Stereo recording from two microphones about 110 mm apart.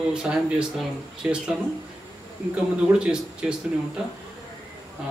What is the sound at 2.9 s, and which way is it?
Speech, 25° right (ahead or behind).